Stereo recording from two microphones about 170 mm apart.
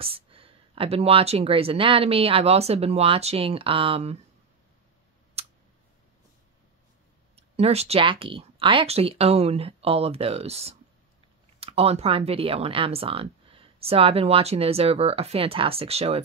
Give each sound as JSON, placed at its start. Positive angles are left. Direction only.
{"t": 0.0, "sound": "speech", "side_deg": -35}
{"t": 5.4, "sound": "a sound", "side_deg": -35}
{"t": 7.3, "sound": "speech", "side_deg": -35}